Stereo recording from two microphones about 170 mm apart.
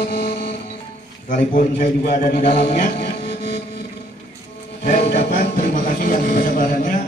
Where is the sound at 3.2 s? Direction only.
75° left (ahead or behind).